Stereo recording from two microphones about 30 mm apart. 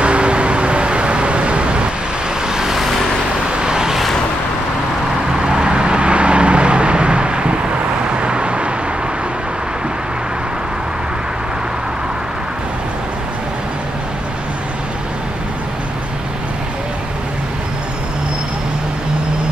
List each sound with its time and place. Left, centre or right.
0.0 s vehicle: right
2.4 s vehicle: centre
5.4 s vehicle: right